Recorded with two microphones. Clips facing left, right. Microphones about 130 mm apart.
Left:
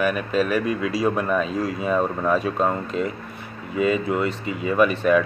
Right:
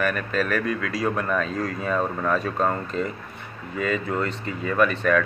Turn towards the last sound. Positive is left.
turn(degrees=15)  # may be behind; listen again after turning